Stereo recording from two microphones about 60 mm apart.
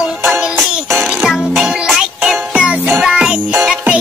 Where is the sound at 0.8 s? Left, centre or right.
Centre.